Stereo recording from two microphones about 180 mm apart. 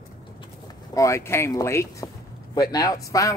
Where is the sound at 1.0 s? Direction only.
15° left (ahead or behind).